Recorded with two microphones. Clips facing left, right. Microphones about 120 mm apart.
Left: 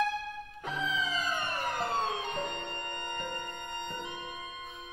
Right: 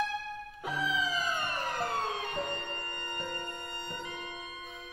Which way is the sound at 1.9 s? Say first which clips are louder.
Left 2 dB; 20° left (ahead or behind).